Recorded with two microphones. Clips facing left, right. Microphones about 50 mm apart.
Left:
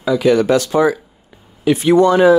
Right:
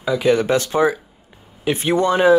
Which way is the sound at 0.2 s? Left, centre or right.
Right.